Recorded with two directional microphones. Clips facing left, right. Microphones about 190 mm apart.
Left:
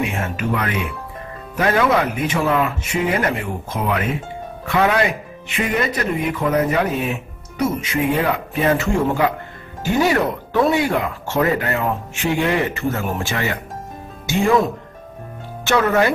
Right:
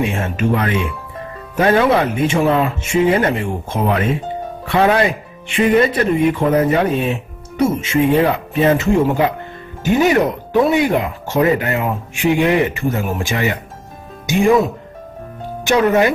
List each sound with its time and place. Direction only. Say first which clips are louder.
0.0 s speech: right 4 dB; 25° right (ahead or behind)
15.6 s speech: right 3 dB; 15° right (ahead or behind)